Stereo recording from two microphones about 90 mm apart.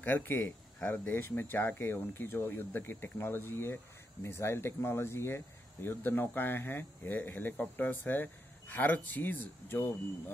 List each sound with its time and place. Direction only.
0.0 s speech: 20° left (ahead or behind)